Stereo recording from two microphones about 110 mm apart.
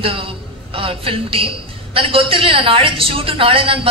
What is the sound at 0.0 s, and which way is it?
A woman's voice, 55° right (ahead or behind).